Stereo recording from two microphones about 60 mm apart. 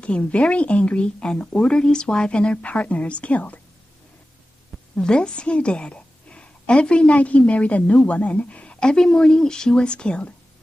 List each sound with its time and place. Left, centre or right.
0.0 s speech: centre
4.9 s a woman's voice: centre